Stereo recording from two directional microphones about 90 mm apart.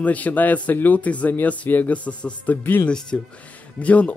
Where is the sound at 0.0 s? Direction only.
15° left (ahead or behind).